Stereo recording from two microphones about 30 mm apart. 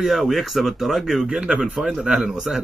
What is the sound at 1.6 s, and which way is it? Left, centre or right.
Speech, right.